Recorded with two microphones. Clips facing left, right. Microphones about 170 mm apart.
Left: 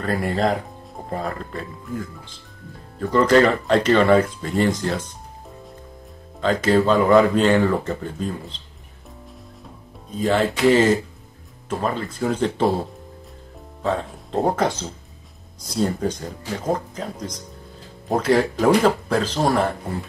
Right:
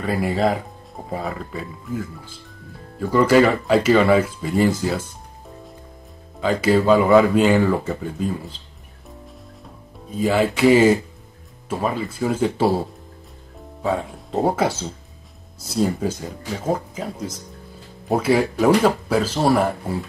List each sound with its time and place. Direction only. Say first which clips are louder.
0.0 s speech: right 1 dB; 5° right (ahead or behind)
6.4 s speech: right 1 dB; 10° right (ahead or behind)
10.1 s speech: right 1 dB; 10° right (ahead or behind)
13.8 s speech: right 1 dB; 5° right (ahead or behind)